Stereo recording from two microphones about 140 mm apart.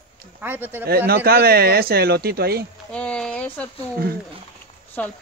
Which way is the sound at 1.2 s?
90° right.